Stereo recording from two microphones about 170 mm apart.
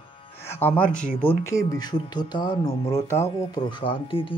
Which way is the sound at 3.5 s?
30° left (ahead or behind).